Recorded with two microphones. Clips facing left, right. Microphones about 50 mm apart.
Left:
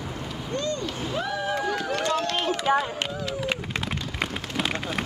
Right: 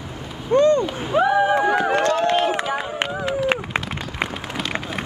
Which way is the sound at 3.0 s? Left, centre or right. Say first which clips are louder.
Right 6 dB; right.